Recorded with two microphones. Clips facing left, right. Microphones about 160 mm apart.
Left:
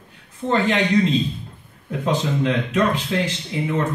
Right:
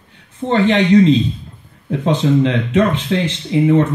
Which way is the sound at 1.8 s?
25° right (ahead or behind).